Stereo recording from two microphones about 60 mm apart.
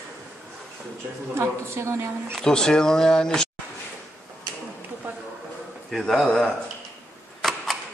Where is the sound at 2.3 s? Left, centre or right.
Centre.